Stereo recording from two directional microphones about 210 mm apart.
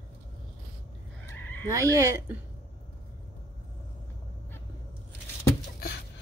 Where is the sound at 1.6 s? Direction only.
15° right (ahead or behind).